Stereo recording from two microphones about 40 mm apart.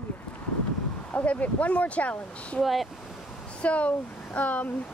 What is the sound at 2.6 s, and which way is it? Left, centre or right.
Speech, centre.